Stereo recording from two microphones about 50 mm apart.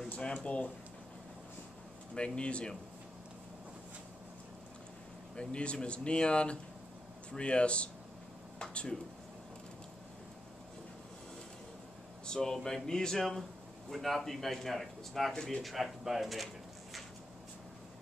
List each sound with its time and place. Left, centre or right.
0.4 s speech: left
2.1 s speech: left
5.3 s speech: left
12.3 s speech: centre
15.6 s speech: centre